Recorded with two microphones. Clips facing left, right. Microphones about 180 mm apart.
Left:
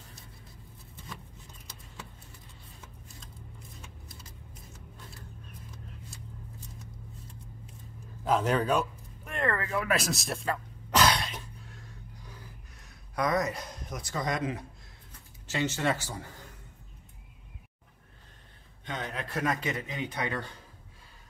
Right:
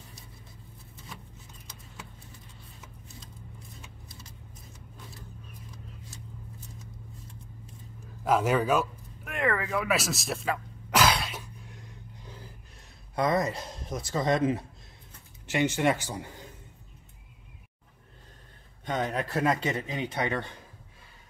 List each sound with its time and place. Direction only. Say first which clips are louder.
8.3 s a sound: right 2 dB; 10° right (ahead or behind)
13.1 s speech: right 2 dB; 25° right (ahead or behind)
15.4 s a man's voice: right 4 dB; 15° right (ahead or behind)
18.9 s a man's voice: right 7 dB; 40° right (ahead or behind)
19.4 s speech: right 2 dB; 30° right (ahead or behind)